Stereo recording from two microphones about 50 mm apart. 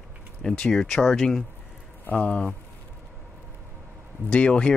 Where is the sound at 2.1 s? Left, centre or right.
Left.